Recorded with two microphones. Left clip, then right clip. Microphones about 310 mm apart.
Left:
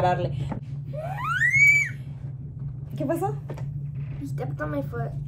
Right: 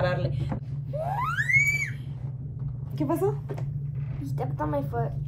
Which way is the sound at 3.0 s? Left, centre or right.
Centre.